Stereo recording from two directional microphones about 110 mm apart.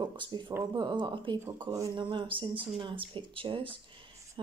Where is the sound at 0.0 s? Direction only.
45° right (ahead or behind).